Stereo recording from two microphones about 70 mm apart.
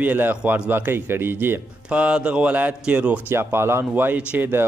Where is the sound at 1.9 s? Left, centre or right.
Centre.